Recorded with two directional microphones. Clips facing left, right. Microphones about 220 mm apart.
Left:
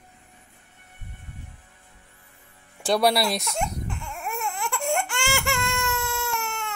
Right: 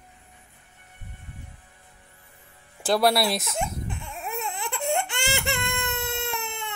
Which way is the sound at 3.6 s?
20° right (ahead or behind).